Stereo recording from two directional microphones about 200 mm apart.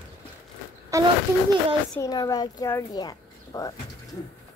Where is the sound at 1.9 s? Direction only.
20° left (ahead or behind).